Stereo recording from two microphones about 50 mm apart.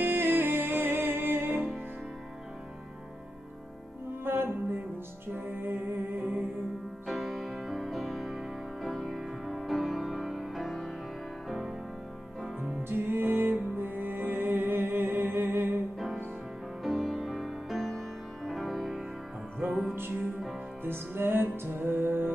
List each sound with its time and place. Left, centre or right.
0.0 s music: right
4.2 s music: right
5.6 s humming: right
7.1 s music: centre
12.8 s music: right
16.8 s music: centre
20.8 s music: right